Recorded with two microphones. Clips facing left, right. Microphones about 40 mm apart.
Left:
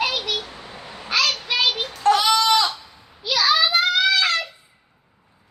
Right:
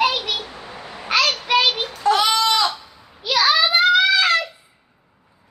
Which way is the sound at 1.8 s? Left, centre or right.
Centre.